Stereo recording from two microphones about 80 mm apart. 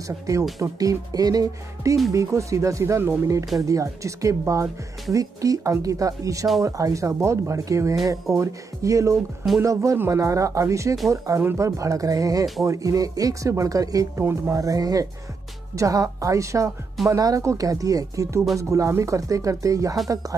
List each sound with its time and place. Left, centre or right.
0.6 s speech: right
14.1 s speech: right
14.5 s speech: right